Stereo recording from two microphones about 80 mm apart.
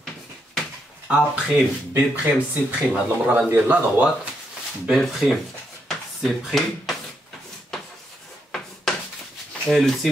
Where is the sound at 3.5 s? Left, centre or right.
Right.